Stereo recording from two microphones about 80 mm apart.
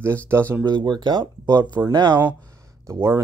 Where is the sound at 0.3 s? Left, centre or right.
Right.